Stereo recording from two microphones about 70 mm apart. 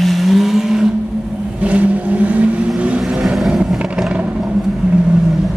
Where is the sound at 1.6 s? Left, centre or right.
Right.